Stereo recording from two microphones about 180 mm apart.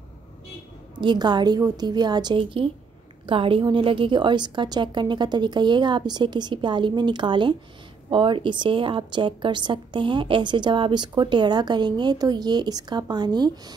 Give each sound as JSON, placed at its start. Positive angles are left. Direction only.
{"t": 0.9, "sound": "a woman's voice", "side_deg": -25}